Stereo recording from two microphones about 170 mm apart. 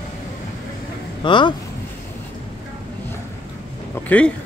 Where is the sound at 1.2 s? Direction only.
30° left (ahead or behind).